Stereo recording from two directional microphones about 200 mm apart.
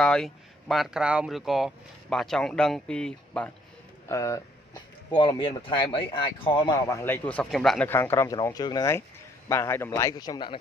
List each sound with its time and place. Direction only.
0.0 s speech: 5° left (ahead or behind)
4.1 s speech: 15° left (ahead or behind)